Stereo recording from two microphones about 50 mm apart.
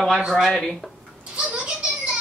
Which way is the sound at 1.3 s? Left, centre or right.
Right.